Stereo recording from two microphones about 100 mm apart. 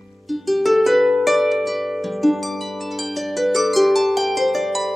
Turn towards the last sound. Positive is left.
turn(degrees=0)  # may be behind; listen again after turning